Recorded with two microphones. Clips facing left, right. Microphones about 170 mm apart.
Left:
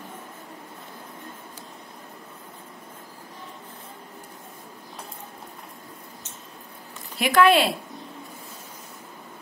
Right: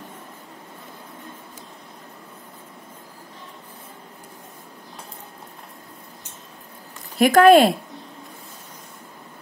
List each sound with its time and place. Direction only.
7.2 s speech: 45° right (ahead or behind)